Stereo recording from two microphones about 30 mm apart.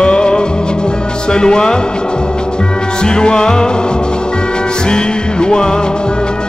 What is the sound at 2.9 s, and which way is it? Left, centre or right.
Music, left.